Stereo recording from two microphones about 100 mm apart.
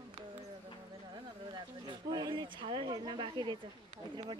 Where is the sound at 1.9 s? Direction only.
50° right (ahead or behind).